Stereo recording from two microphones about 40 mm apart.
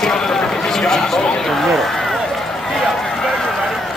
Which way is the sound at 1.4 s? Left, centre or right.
Centre.